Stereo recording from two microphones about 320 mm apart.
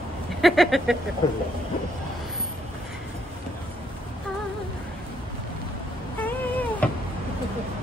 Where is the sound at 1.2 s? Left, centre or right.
Centre.